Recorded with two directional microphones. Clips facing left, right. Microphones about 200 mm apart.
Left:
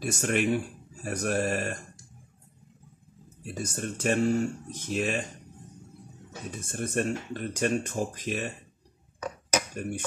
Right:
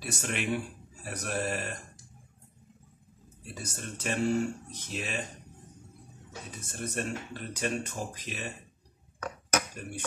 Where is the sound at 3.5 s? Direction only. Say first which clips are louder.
Left 7 dB; 50° left (ahead or behind).